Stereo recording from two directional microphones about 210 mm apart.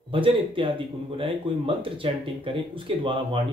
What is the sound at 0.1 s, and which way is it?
Speech, 25° right (ahead or behind).